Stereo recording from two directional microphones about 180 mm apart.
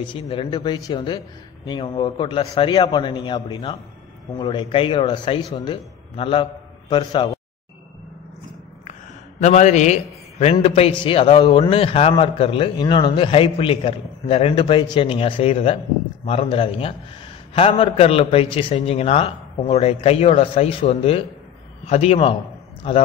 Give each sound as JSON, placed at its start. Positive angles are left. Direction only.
{"t": 0.0, "sound": "a man's voice", "side_deg": 30}
{"t": 9.4, "sound": "a man's voice", "side_deg": 40}